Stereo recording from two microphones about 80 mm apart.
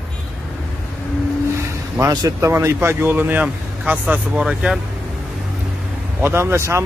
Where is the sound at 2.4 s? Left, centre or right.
Right; by 4.4 s centre.